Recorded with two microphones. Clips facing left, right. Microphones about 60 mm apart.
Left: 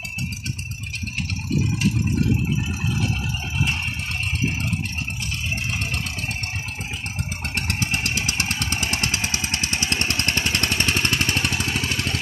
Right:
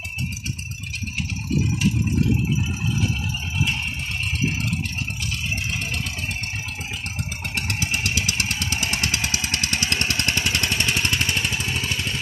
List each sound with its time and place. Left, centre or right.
7.5 s vehicle: left
9.0 s vehicle: left